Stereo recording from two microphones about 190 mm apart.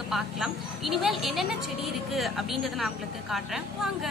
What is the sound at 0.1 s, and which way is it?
A woman's voice, centre (ahead or behind).